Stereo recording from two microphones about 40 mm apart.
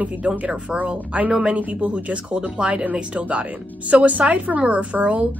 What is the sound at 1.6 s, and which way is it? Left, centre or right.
A woman's voice, right.